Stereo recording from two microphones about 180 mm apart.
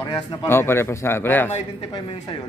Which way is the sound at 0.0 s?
20° left (ahead or behind).